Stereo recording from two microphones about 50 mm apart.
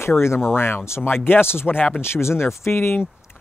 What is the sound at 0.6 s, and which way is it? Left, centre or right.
Speech, left.